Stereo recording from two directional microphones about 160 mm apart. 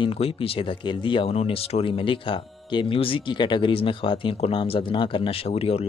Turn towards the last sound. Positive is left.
turn(degrees=40)  # may be behind; listen again after turning